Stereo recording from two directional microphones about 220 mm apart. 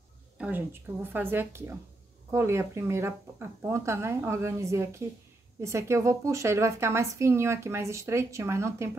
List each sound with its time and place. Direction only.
0.4 s a woman's voice: 10° right (ahead or behind)